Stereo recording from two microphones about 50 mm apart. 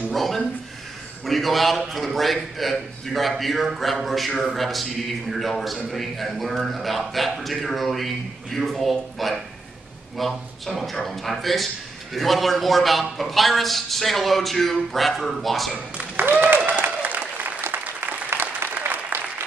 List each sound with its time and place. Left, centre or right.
0.1 s a man's voice: centre
16.2 s applause: right
18.3 s applause: right